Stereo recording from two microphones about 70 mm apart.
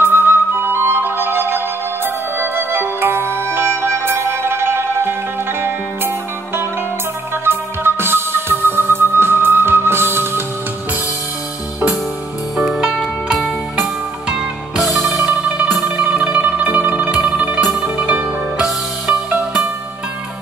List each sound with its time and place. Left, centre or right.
0.0 s flute: right
2.3 s music: right
12.5 s music: centre
15.4 s music: centre
16.0 s zither: centre
17.6 s music: centre